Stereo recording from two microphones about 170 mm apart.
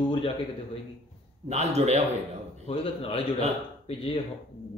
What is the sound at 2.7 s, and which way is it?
A man's voice, 35° left (ahead or behind).